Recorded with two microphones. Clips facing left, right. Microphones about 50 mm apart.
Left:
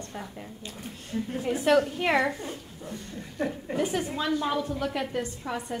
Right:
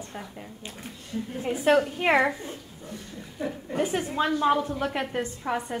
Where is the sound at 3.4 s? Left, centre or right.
Left.